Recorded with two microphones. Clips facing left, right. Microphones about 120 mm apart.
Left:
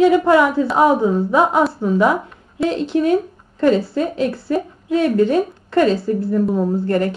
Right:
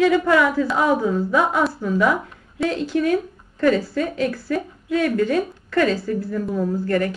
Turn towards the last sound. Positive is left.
turn(degrees=30)  # may be behind; listen again after turning